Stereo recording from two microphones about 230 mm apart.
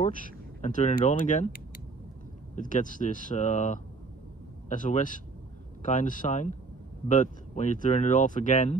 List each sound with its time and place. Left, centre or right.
0.0 s speech: left
2.5 s speech: left